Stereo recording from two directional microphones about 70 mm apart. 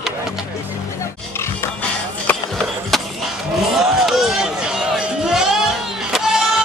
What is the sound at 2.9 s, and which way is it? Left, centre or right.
Skateboard, centre.